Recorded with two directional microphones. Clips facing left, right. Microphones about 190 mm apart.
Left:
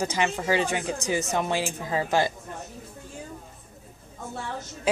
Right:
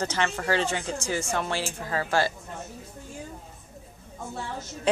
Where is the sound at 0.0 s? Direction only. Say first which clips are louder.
Left 2 dB; 10° left (ahead or behind).